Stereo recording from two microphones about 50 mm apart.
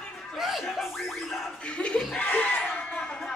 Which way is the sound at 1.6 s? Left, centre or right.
Left.